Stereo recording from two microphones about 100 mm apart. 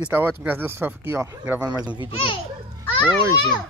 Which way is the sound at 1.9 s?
55° left (ahead or behind).